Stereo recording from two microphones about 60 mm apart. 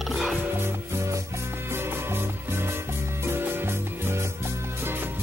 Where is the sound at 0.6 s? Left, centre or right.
Right.